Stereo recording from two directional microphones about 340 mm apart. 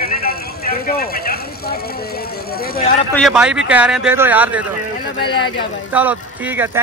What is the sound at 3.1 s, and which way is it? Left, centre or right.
Speech, centre.